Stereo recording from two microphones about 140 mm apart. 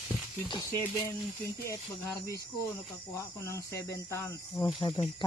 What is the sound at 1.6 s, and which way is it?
Speech, 20° left (ahead or behind).